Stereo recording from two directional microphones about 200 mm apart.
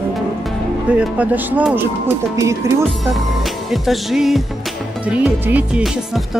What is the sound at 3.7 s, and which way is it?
Music, centre (ahead or behind).